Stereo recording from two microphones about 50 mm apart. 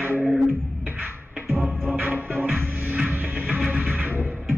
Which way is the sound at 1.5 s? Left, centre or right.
Centre.